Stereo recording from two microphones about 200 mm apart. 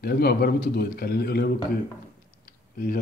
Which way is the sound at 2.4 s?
45° left (ahead or behind).